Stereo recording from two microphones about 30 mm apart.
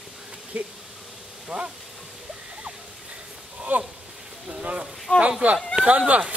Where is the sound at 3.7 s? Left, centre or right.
Right.